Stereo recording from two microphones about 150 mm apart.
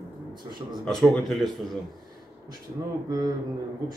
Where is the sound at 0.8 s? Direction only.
5° left (ahead or behind).